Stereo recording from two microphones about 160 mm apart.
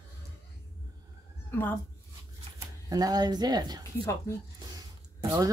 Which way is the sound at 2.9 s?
25° right (ahead or behind).